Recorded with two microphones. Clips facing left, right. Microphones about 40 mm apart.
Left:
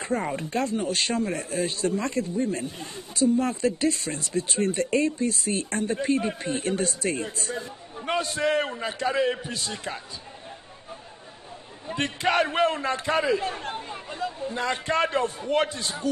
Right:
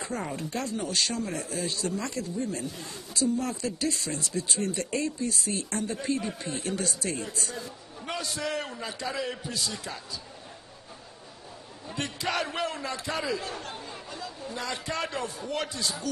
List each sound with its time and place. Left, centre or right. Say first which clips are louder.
0.0 s speech: left 5 dB; left
11.9 s speech: left 6 dB; left